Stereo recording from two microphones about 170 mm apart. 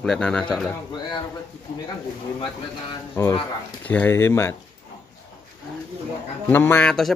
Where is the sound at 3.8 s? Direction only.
10° left (ahead or behind).